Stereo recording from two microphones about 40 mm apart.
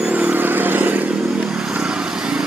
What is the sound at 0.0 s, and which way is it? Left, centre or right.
Vehicle, right.